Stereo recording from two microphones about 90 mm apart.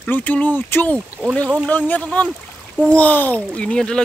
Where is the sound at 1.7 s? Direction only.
20° left (ahead or behind).